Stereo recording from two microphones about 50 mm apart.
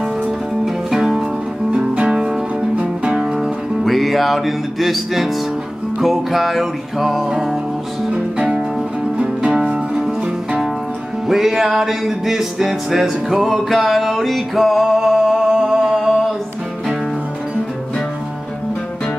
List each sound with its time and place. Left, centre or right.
0.2 s music: centre
3.8 s music: centre
9.2 s music: centre
10.2 s music: centre
11.2 s music: centre